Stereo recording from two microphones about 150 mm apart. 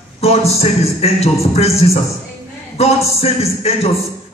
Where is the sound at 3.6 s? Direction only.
45° left (ahead or behind).